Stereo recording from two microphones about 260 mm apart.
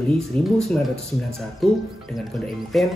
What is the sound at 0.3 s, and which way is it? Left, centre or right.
Speech, centre.